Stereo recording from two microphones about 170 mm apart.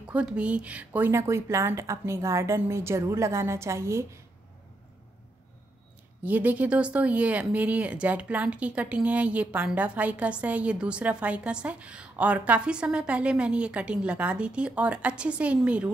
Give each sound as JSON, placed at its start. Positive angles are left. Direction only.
{"t": 0.1, "sound": "speech", "side_deg": -5}
{"t": 6.2, "sound": "speech", "side_deg": -10}